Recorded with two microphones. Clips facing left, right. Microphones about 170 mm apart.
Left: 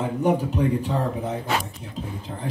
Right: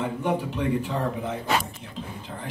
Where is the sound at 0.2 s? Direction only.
40° left (ahead or behind).